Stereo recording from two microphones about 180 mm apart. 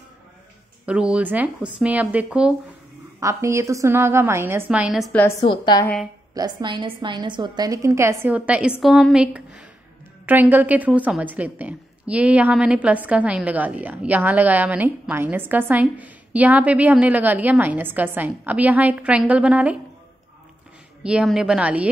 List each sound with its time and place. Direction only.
0.8 s a woman's voice: 5° right (ahead or behind)
3.2 s a woman's voice: 15° right (ahead or behind); by 5.2 s centre (ahead or behind)
5.5 s a woman's voice: 25° left (ahead or behind)
6.3 s a woman's voice: 25° right (ahead or behind); by 19.8 s 5° right (ahead or behind)
21.0 s a woman's voice: 5° right (ahead or behind)